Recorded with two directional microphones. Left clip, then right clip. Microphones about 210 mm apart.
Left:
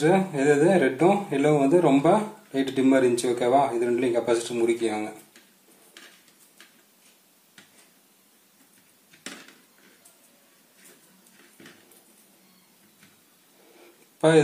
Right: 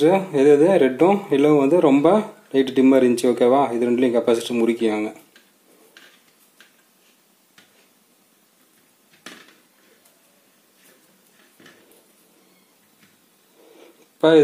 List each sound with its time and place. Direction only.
0.0 s speech: 45° right (ahead or behind)